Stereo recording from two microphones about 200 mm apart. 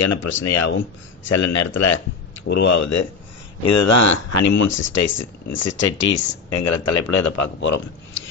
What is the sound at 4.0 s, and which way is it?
A man's voice, 70° left (ahead or behind).